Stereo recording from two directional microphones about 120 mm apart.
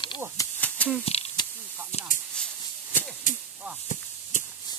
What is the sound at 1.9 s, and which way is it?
Snake, 65° left (ahead or behind).